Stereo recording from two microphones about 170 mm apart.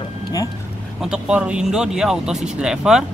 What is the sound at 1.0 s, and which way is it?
Speech, 5° right (ahead or behind).